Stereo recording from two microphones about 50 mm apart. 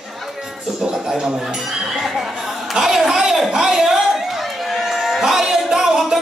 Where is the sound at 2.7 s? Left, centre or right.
Centre.